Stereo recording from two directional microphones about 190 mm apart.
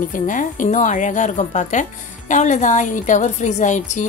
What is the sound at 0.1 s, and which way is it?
A woman's voice, 45° left (ahead or behind).